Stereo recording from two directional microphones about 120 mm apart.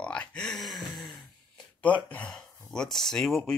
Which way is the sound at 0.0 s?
10° left (ahead or behind).